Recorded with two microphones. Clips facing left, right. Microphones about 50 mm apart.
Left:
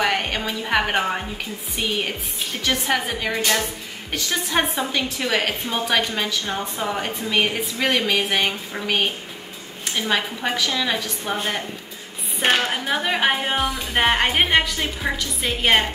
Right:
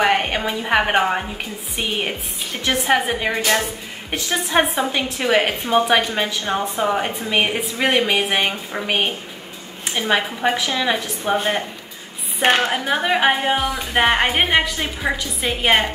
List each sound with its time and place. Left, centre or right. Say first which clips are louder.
0.0 s a woman's voice: right 4 dB; centre
12.6 s a woman's voice: right 3 dB; centre